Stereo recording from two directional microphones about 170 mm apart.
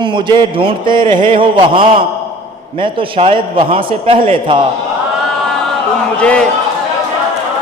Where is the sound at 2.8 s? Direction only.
35° right (ahead or behind).